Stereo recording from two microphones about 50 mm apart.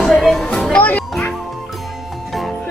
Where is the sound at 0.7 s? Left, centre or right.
Left.